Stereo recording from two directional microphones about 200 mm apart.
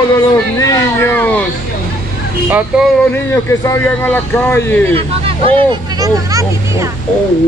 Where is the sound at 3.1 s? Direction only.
15° left (ahead or behind).